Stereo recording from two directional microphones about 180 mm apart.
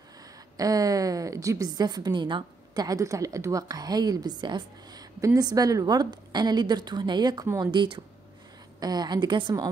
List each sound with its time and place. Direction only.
0.6 s a woman's voice: 20° right (ahead or behind)